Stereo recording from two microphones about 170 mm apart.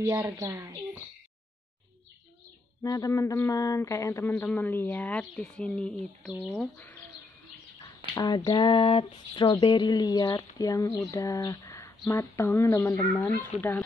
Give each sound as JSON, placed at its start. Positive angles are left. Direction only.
{"t": 0.0, "sound": "speech", "side_deg": -20}
{"t": 2.8, "sound": "speech", "side_deg": 20}
{"t": 8.1, "sound": "speech", "side_deg": 25}